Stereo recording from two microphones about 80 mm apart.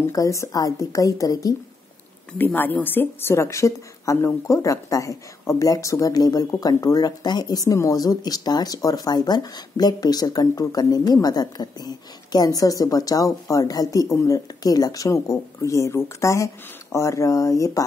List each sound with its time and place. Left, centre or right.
0.1 s speech: left
2.3 s speech: left